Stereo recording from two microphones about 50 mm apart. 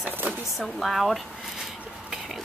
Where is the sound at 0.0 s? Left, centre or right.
Right.